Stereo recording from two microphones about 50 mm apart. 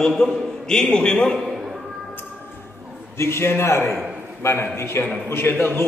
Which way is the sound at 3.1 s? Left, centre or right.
Left.